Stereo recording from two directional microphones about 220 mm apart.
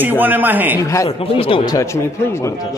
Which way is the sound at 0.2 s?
10° right (ahead or behind).